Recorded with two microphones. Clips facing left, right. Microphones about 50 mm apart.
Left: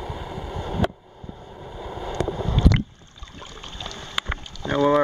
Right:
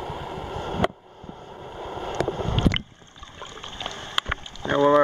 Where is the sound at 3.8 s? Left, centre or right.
Right.